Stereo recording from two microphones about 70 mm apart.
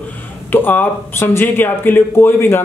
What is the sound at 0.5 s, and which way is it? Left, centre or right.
Speech, left.